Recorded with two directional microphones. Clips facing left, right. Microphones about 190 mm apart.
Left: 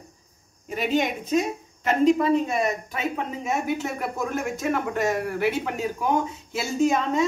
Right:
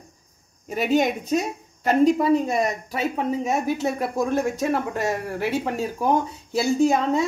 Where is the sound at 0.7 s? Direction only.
40° right (ahead or behind).